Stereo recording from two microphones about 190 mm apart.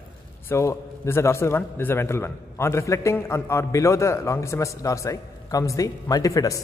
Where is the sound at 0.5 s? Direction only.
15° left (ahead or behind).